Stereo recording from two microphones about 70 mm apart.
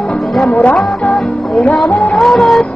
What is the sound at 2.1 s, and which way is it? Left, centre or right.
Music, centre.